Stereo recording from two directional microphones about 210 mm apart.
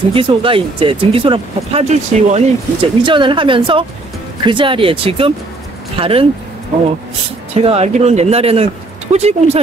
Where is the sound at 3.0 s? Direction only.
25° right (ahead or behind).